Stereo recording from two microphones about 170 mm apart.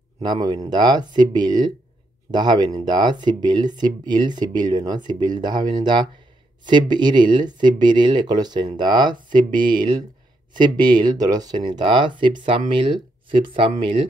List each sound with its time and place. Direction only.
0.3 s speech: 25° right (ahead or behind)